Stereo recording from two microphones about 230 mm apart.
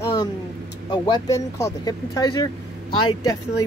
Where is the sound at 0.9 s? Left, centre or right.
Centre.